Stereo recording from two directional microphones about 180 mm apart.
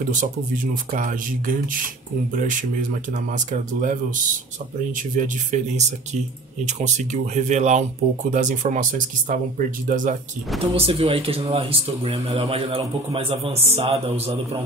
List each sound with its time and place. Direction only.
0.9 s speech: 50° right (ahead or behind)
10.7 s speech: 30° right (ahead or behind)